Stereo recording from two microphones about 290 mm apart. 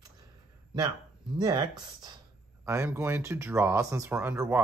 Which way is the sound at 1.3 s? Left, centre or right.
Centre.